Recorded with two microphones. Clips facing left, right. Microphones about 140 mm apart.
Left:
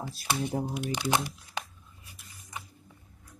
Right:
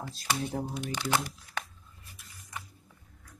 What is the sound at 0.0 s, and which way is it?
Speech, 10° left (ahead or behind).